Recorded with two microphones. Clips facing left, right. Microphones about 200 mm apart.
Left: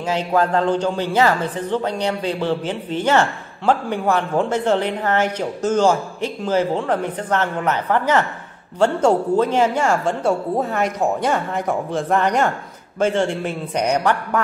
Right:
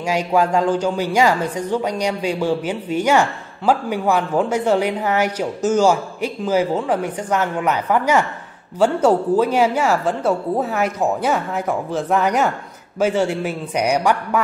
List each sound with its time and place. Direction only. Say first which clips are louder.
0.0 s a man's voice: right 1 dB; 10° right (ahead or behind)